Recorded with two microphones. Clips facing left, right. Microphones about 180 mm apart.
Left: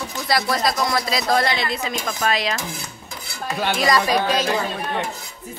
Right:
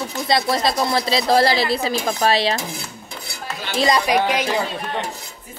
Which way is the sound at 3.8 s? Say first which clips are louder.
Right 3 dB; 20° right (ahead or behind).